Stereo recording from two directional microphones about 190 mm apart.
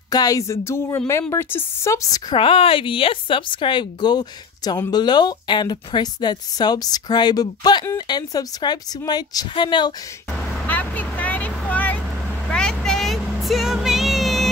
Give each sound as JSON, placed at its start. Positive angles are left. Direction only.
{"t": 0.1, "sound": "speech", "side_deg": 20}
{"t": 10.7, "sound": "vehicle", "side_deg": 10}